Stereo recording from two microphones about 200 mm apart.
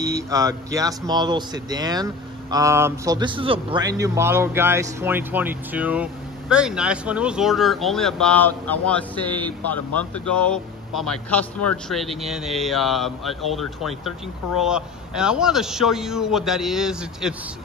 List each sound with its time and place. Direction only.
0.0 s speech: 15° right (ahead or behind)